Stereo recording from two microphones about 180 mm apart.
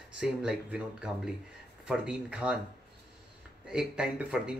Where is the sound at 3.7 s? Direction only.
5° right (ahead or behind).